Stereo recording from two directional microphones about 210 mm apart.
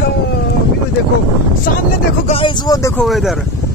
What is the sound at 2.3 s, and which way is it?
Speech, 25° left (ahead or behind).